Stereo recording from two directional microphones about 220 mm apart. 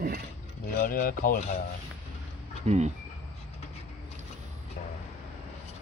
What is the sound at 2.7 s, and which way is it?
Speech, 30° right (ahead or behind).